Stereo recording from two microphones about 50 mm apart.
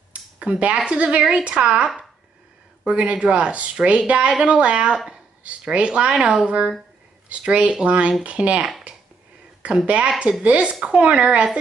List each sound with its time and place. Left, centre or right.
0.1 s speech: right
4.9 s speech: centre
5.4 s speech: right
8.9 s finger snapping: right
9.8 s speech: right